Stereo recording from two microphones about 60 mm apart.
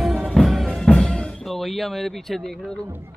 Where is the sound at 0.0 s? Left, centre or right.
Centre.